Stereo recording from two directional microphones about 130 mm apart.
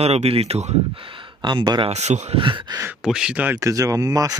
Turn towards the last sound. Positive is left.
turn(degrees=-25)  # may be behind; listen again after turning